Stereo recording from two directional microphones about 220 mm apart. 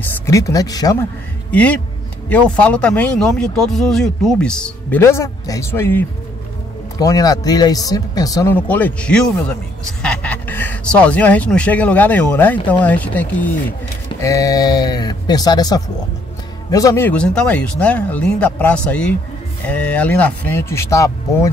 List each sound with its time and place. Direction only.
0.0 s speech: 15° left (ahead or behind)
1.5 s speech: 5° left (ahead or behind)